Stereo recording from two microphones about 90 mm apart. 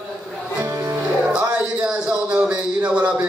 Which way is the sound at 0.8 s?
20° right (ahead or behind).